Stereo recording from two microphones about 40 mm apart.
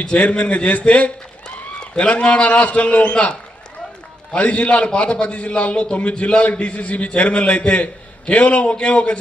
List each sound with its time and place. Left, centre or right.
0.0 s a man's voice: left
4.4 s a man's voice: left